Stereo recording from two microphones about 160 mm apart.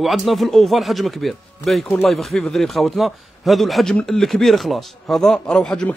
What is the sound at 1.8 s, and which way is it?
Speech, 10° left (ahead or behind).